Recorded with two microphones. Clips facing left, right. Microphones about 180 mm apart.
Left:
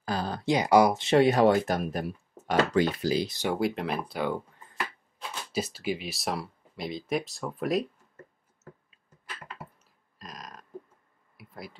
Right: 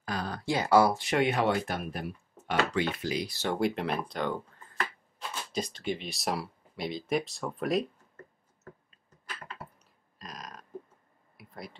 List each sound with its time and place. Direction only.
0.0 s speech: 30° left (ahead or behind)
3.3 s speech: 15° left (ahead or behind)
3.5 s speech: centre (ahead or behind)
10.1 s a sound: centre (ahead or behind)